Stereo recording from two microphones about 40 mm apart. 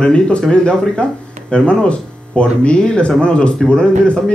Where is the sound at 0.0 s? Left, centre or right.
Left.